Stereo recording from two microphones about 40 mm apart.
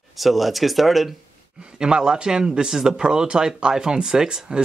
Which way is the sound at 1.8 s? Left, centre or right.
Centre.